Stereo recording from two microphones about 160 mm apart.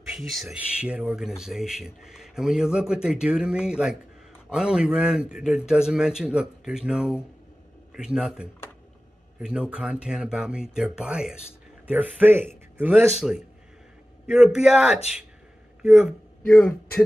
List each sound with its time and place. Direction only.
0.1 s speech: centre (ahead or behind)
13.2 s speech: centre (ahead or behind)